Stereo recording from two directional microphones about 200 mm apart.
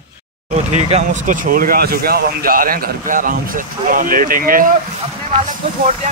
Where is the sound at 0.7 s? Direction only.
35° right (ahead or behind).